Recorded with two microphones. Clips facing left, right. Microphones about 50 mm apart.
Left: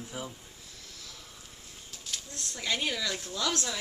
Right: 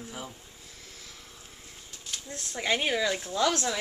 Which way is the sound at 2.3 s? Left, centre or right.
Right.